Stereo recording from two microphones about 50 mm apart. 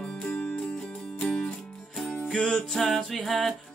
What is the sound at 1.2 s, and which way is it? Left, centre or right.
Music, centre.